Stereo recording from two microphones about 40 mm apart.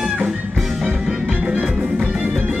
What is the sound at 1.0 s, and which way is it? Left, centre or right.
Music, right.